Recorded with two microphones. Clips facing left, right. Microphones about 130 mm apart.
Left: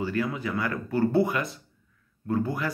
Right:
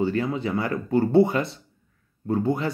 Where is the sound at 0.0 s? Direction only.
25° right (ahead or behind).